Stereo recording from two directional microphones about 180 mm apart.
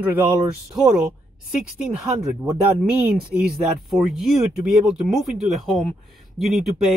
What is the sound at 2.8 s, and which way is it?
Speech, 10° right (ahead or behind).